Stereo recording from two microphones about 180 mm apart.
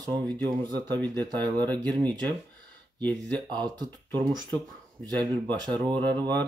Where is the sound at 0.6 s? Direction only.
25° right (ahead or behind).